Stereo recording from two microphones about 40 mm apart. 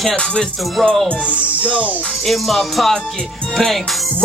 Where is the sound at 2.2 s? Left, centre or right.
Centre.